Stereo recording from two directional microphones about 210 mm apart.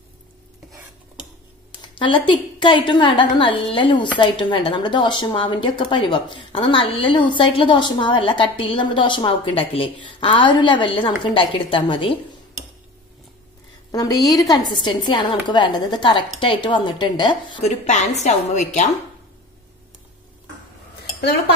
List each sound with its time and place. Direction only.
1.8 s speech: 25° left (ahead or behind)
14.2 s a woman's voice: 15° left (ahead or behind)
17.8 s a woman's voice: 35° left (ahead or behind)